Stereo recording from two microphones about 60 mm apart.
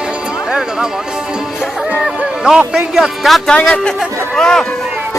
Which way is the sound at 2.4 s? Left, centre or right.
Centre.